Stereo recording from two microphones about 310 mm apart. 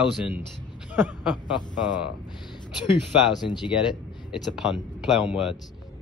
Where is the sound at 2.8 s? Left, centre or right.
Centre.